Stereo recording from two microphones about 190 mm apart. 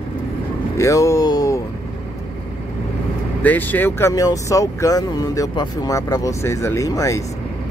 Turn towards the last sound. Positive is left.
turn(degrees=15)  # may be behind; listen again after turning